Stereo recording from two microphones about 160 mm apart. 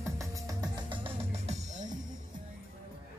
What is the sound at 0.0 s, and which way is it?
Music, 20° right (ahead or behind).